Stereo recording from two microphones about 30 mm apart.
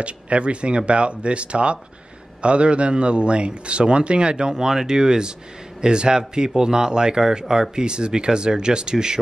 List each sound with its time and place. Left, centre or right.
0.0 s a man's voice: right; by 7.8 s centre
7.8 s a man's voice: right